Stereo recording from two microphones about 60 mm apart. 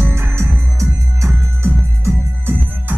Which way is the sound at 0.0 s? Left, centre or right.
Right.